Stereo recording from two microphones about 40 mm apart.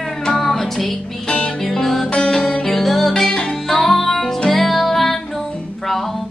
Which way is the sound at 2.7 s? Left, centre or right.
Centre.